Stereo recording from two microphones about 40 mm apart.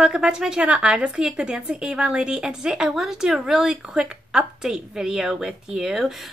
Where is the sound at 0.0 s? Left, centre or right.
Centre.